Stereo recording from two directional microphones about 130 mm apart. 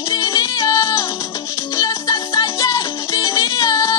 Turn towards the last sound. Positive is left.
turn(degrees=30)  # may be behind; listen again after turning